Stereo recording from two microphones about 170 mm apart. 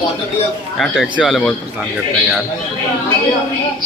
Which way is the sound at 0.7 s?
Centre (ahead or behind).